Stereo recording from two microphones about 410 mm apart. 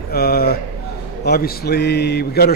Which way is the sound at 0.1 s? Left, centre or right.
Left.